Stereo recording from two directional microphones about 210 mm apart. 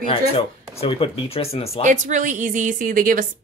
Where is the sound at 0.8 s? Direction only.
25° left (ahead or behind).